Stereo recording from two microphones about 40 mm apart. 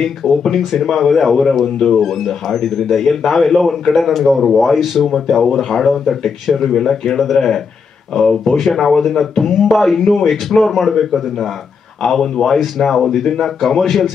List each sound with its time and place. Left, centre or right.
0.4 s a man's voice: centre